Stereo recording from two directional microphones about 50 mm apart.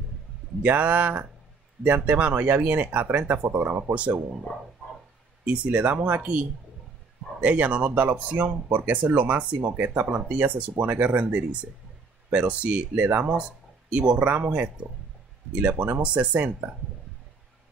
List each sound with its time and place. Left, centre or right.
0.6 s speech: right
3.5 s speech: right
3.9 s speech: right
5.4 s speech: right
13.2 s speech: right